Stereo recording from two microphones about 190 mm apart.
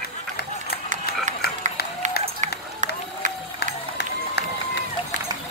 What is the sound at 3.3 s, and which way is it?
Crowd, 60° left (ahead or behind).